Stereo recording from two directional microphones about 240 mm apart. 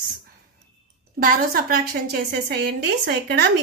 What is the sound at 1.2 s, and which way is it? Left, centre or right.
A woman's voice, right.